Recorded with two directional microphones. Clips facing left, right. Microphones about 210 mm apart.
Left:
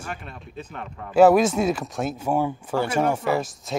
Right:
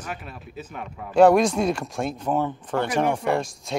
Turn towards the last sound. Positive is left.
turn(degrees=5)  # may be behind; listen again after turning